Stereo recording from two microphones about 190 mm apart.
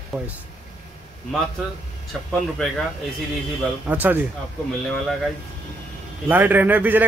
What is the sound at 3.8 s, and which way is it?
Speech, 10° right (ahead or behind).